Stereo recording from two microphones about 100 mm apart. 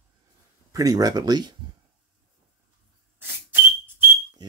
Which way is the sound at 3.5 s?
20° right (ahead or behind).